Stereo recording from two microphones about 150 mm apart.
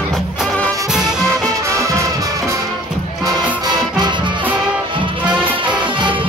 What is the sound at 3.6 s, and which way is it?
Music, 30° right (ahead or behind).